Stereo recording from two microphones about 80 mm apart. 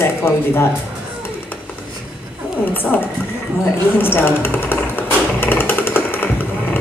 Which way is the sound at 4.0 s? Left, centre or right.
Left.